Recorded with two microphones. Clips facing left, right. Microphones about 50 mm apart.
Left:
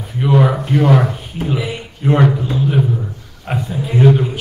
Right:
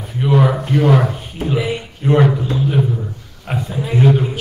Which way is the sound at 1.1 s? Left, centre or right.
Centre.